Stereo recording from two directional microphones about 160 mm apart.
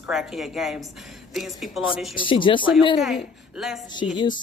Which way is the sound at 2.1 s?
30° left (ahead or behind).